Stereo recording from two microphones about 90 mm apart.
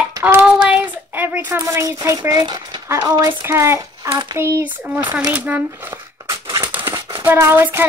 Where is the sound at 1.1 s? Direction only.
25° right (ahead or behind).